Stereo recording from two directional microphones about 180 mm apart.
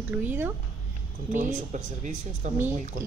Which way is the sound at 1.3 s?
45° right (ahead or behind).